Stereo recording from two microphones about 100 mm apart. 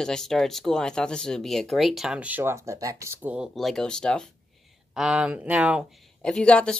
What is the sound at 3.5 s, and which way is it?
Speech, 5° left (ahead or behind).